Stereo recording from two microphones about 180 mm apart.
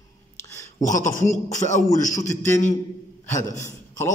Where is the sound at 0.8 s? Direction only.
45° left (ahead or behind).